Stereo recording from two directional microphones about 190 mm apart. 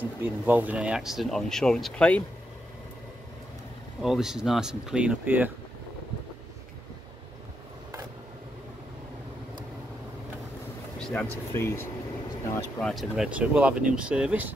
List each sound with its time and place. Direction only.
0.0 s speech: 10° right (ahead or behind)
4.0 s speech: centre (ahead or behind)
11.0 s a sound: 5° left (ahead or behind)
11.5 s speech: 15° left (ahead or behind)
12.9 s speech: 5° right (ahead or behind)